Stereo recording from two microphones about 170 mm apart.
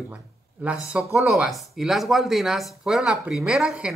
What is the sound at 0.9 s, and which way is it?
Speech, 5° right (ahead or behind).